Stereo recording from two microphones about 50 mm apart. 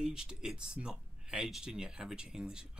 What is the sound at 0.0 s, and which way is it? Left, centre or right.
Speech, centre.